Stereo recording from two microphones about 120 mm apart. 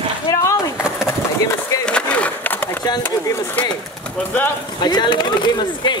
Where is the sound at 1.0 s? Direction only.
30° left (ahead or behind).